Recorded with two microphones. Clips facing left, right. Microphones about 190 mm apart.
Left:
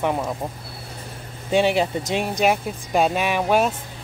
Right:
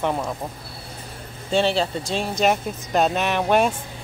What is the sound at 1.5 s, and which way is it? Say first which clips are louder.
Speech: left 2 dB; 15° left (ahead or behind).